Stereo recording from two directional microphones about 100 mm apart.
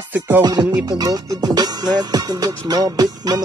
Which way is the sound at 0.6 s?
45° right (ahead or behind).